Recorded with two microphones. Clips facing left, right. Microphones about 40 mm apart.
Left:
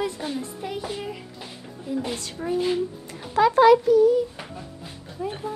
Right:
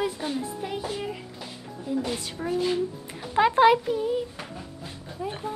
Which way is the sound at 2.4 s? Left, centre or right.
Centre.